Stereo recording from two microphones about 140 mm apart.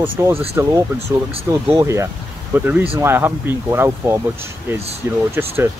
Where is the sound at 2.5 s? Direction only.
10° right (ahead or behind).